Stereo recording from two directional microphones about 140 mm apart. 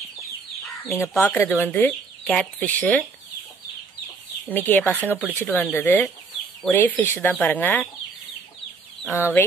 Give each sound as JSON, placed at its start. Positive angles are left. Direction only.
{"t": 0.9, "sound": "speech", "side_deg": 15}
{"t": 4.5, "sound": "speech", "side_deg": 15}
{"t": 9.1, "sound": "speech", "side_deg": 20}